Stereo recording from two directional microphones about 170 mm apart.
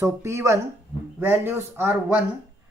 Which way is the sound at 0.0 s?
15° right (ahead or behind).